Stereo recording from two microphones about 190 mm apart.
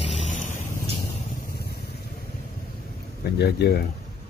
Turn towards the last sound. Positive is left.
turn(degrees=60)  # may be behind; listen again after turning